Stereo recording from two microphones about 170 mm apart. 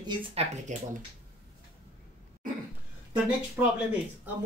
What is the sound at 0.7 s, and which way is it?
Speech, 45° right (ahead or behind).